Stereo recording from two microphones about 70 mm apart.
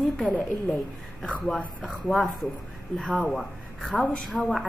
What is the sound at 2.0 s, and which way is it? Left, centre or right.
Speech, centre.